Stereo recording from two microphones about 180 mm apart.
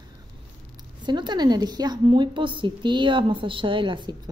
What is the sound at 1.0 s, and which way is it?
A woman's voice, 25° right (ahead or behind).